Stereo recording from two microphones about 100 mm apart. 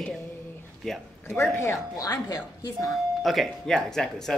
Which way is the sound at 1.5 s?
30° left (ahead or behind).